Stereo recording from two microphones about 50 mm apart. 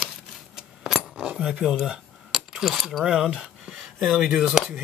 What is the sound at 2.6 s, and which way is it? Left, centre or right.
Speech, centre.